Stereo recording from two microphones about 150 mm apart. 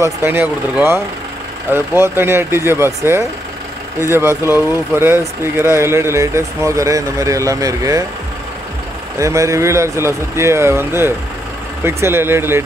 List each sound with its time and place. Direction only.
0.0 s speech: 15° right (ahead or behind)
9.2 s speech: 20° right (ahead or behind)